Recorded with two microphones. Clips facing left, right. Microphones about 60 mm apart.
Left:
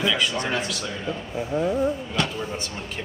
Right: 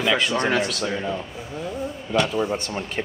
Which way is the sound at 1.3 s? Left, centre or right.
Left.